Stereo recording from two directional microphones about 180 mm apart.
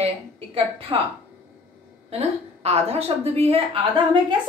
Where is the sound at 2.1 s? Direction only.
35° right (ahead or behind).